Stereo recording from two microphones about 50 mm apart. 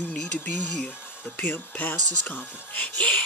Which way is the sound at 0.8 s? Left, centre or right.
Left.